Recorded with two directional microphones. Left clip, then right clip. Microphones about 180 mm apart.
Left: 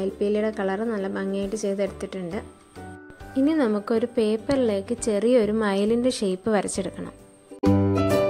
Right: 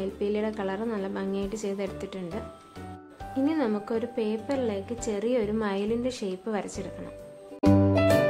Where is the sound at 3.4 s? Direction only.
30° left (ahead or behind).